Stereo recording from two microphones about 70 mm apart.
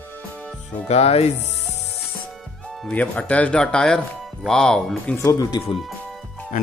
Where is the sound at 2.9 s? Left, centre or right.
Centre.